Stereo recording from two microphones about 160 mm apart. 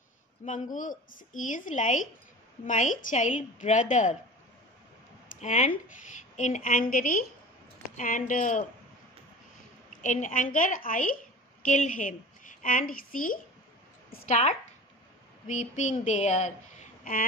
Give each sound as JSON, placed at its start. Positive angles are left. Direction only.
{"t": 0.5, "sound": "a woman's voice", "side_deg": 55}
{"t": 5.4, "sound": "a woman's voice", "side_deg": 50}
{"t": 10.0, "sound": "a woman's voice", "side_deg": 50}
{"t": 14.2, "sound": "a woman's voice", "side_deg": 50}